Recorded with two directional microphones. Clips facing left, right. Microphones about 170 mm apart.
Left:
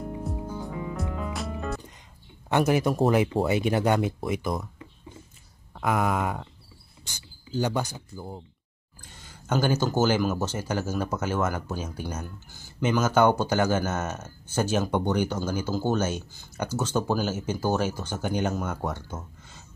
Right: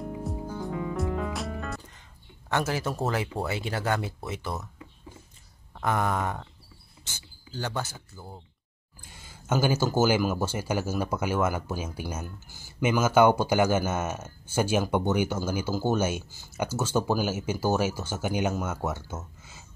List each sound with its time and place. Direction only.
0.0 s music: centre (ahead or behind)
2.5 s speech: 15° left (ahead or behind)
5.8 s speech: 5° left (ahead or behind)
9.1 s speech: 10° right (ahead or behind)